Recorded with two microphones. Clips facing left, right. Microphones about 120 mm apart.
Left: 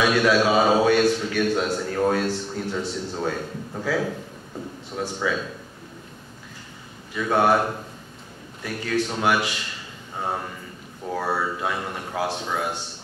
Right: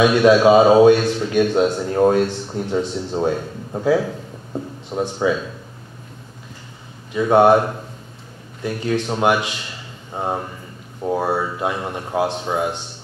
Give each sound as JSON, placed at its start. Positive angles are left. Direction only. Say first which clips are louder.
{"t": 0.0, "sound": "a man's voice", "louder": "right 7 dB", "side_deg": -25}
{"t": 7.2, "sound": "a man's voice", "louder": "right 7 dB", "side_deg": -25}
{"t": 8.6, "sound": "a man's voice", "louder": "right 4 dB", "side_deg": -20}